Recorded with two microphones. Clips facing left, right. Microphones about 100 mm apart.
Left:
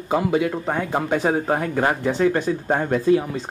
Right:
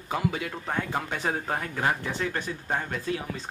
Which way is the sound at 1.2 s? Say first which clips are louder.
Left 9 dB; 15° left (ahead or behind).